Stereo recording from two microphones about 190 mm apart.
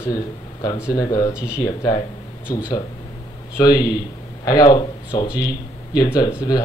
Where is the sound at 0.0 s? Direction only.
20° left (ahead or behind).